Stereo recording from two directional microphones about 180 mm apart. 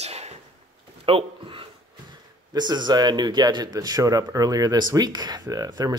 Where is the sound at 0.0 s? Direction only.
35° right (ahead or behind).